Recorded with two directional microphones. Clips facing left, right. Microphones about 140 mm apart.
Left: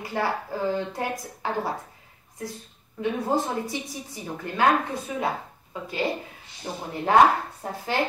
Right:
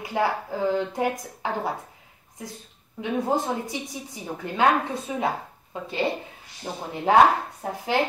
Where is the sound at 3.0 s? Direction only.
20° right (ahead or behind).